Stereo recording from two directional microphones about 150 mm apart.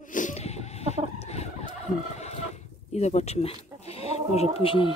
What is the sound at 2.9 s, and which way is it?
Speech, 50° left (ahead or behind).